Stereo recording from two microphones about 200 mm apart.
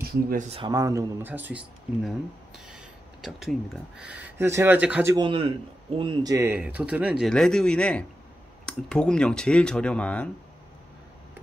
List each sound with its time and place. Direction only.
0.0 s speech: 45° right (ahead or behind)
0.5 s speech: 25° right (ahead or behind); by 5.1 s 5° right (ahead or behind)
5.1 s a man's voice: 25° right (ahead or behind); by 10.3 s 5° left (ahead or behind)